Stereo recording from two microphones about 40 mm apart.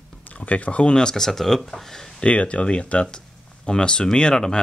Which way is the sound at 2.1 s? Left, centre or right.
Left.